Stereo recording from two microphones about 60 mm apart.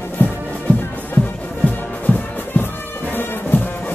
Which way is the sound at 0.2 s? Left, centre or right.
Left.